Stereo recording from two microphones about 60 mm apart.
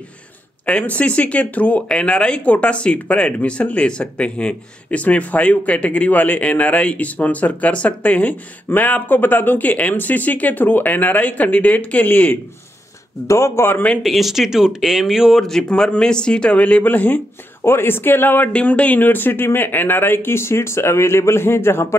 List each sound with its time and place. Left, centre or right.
0.7 s speech: left
13.3 s a man's voice: left
14.0 s speech: centre
15.3 s speech: centre; by 17.2 s left
17.6 s speech: left
18.5 s speech: left